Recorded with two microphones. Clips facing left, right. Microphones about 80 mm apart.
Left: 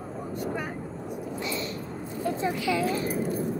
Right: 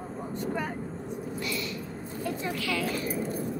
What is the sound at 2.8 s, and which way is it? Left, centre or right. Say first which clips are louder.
Speech: left 4 dB; left.